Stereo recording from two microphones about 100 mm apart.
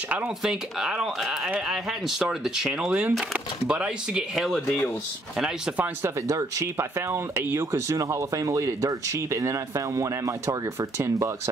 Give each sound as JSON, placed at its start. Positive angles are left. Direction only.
{"t": 0.4, "sound": "speech", "side_deg": -5}
{"t": 6.0, "sound": "speech", "side_deg": -30}